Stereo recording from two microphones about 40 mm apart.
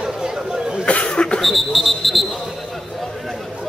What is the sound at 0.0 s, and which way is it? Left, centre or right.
Chatter, centre.